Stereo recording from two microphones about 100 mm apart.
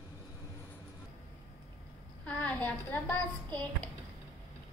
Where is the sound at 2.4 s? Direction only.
15° left (ahead or behind).